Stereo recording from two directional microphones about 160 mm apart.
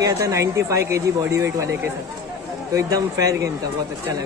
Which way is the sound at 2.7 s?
20° right (ahead or behind).